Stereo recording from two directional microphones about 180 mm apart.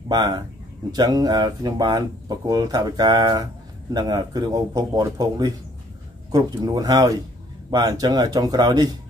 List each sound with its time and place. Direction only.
0.1 s speech: 25° right (ahead or behind)